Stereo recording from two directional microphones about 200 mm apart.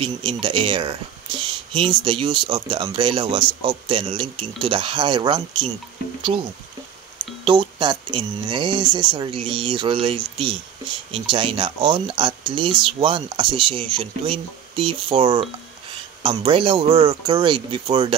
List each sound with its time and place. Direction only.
0.0 s speech: 25° right (ahead or behind)
7.4 s speech: 25° right (ahead or behind)